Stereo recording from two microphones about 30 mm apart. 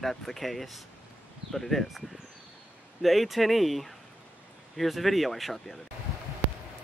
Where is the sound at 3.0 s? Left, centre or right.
Centre.